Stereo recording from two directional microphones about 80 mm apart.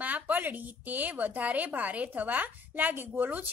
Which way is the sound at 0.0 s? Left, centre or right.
Right.